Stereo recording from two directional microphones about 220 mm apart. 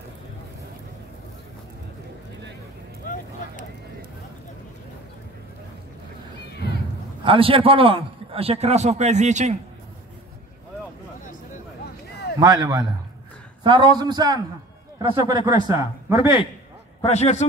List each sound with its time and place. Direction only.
7.2 s a man's voice: 25° right (ahead or behind)
12.4 s a man's voice: 15° right (ahead or behind)
17.0 s a man's voice: 30° left (ahead or behind)